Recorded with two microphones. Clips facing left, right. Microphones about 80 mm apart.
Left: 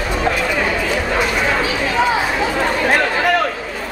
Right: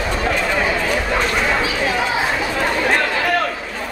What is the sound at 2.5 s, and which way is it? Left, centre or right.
Chatter, centre.